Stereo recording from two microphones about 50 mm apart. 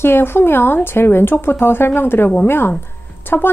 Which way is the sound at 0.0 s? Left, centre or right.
Left.